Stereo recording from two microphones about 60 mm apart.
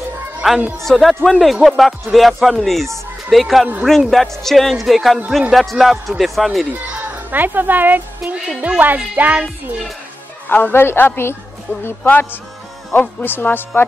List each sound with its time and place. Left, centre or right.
0.4 s speech: centre
6.9 s a child's voice: right
10.5 s speech: left